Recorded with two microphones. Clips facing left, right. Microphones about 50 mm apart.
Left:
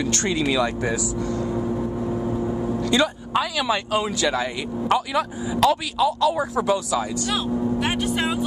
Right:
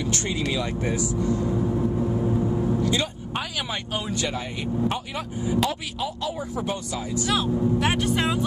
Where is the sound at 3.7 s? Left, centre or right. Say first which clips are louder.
Left 7 dB; left.